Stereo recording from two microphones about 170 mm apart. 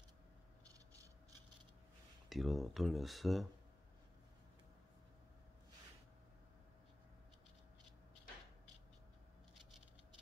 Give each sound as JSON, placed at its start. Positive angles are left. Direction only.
{"t": 2.2, "sound": "speech", "side_deg": 0}